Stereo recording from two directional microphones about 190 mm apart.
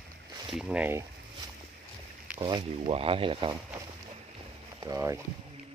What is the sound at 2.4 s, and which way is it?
Speech, 25° right (ahead or behind).